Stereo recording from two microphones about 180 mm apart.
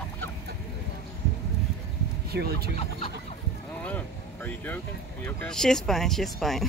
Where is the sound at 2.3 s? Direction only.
60° right (ahead or behind).